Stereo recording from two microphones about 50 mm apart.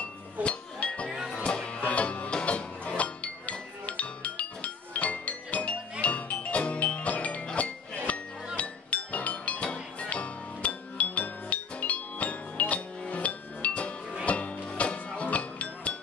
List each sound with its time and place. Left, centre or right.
0.0 s music: left